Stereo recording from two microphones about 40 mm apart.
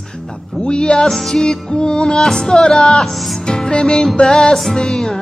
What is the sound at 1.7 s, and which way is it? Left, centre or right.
Music, left.